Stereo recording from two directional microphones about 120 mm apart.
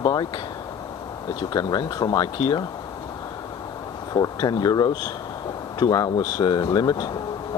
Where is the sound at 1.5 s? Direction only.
35° left (ahead or behind).